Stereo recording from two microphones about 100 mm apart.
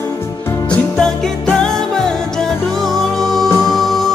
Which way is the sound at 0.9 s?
5° left (ahead or behind).